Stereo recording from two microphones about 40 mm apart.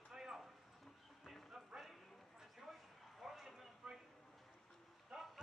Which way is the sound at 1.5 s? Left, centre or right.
Centre.